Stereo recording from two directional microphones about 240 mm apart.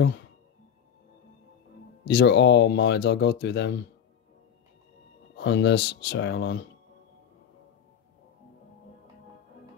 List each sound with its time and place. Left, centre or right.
2.0 s speech: left
5.4 s speech: left